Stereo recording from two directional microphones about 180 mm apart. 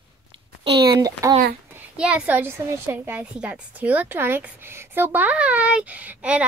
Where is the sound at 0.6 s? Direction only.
65° right (ahead or behind).